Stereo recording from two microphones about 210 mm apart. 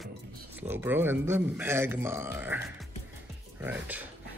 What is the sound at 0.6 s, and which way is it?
A man's voice, 10° right (ahead or behind).